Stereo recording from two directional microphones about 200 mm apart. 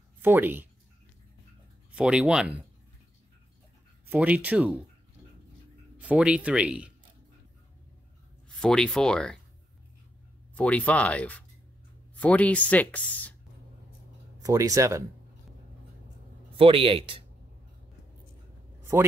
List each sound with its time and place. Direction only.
0.2 s speech: 10° right (ahead or behind)
1.9 s speech: 5° right (ahead or behind)
4.1 s speech: 10° right (ahead or behind)
5.9 s speech: 5° right (ahead or behind)
8.5 s speech: 5° left (ahead or behind)
10.5 s speech: 5° left (ahead or behind)
14.4 s speech: 15° right (ahead or behind)
16.5 s speech: 25° right (ahead or behind)